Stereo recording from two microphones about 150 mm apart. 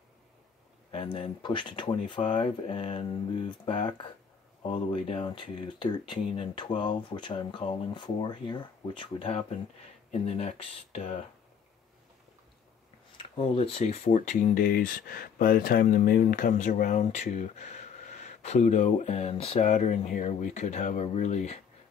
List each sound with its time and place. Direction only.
1.1 s speech: 35° left (ahead or behind)
13.2 s speech: 40° left (ahead or behind)